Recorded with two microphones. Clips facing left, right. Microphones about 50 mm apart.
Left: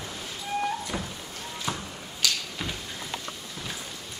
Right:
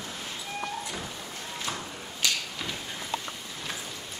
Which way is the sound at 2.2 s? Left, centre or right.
Right.